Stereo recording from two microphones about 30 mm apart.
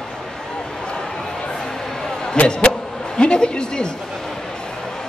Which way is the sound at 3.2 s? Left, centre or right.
Left.